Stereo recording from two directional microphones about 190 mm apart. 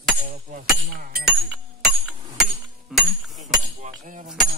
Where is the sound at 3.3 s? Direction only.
40° right (ahead or behind).